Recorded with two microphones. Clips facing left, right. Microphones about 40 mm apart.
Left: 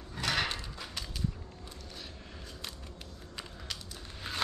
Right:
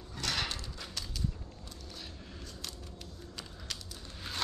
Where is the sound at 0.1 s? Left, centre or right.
Centre.